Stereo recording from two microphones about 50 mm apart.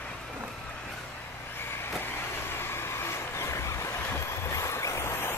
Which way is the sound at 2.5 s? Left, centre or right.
Left.